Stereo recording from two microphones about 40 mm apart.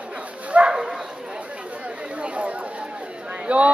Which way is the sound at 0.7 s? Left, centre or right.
Centre.